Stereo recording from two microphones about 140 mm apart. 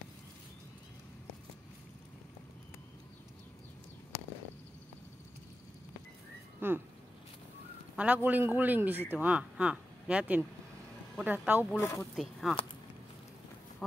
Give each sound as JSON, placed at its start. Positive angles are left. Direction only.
{"t": 6.6, "sound": "a man's voice", "side_deg": -15}
{"t": 7.9, "sound": "a man's voice", "side_deg": -10}
{"t": 11.8, "sound": "speech", "side_deg": 20}
{"t": 12.2, "sound": "speech", "side_deg": 0}